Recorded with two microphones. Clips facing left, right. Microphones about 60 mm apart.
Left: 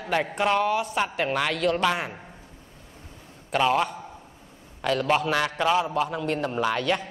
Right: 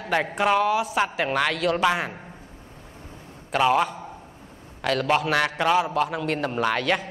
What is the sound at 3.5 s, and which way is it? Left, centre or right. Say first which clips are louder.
A woman's voice: right 2 dB; centre.